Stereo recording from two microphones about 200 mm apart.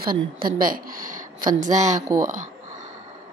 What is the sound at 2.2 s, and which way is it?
Speech, 40° right (ahead or behind).